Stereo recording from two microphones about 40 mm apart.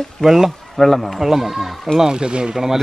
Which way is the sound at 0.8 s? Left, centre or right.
Centre.